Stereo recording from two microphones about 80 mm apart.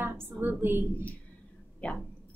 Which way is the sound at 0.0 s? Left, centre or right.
Right.